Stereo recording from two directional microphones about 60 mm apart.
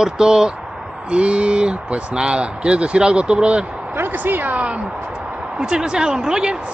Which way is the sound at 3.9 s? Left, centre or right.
Right.